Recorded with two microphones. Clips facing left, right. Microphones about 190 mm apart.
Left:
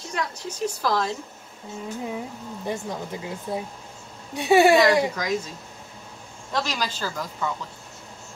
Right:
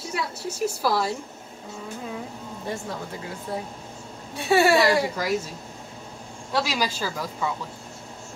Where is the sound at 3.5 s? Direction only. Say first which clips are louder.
Left 1 dB; 15° left (ahead or behind).